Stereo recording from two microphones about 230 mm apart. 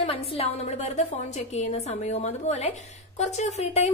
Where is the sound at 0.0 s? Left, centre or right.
Left.